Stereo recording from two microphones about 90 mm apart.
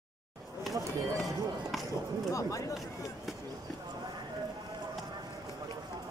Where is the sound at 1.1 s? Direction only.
Centre (ahead or behind).